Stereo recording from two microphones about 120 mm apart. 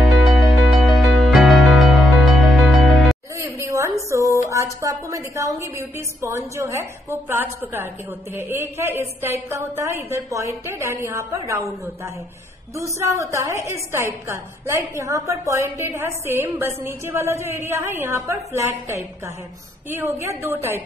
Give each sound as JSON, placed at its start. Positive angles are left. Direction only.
{"t": 0.1, "sound": "music", "side_deg": 0}
{"t": 3.3, "sound": "a sound", "side_deg": -25}
{"t": 4.1, "sound": "a woman's voice", "side_deg": -25}